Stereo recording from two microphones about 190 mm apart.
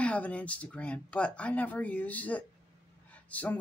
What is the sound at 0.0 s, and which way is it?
Speech, 5° left (ahead or behind).